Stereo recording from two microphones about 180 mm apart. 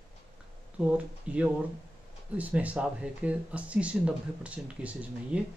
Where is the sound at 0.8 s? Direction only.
10° right (ahead or behind).